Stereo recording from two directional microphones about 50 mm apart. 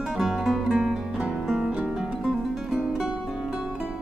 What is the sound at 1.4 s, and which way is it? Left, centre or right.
Music, centre.